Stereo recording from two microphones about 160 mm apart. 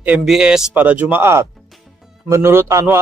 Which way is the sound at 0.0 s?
5° right (ahead or behind).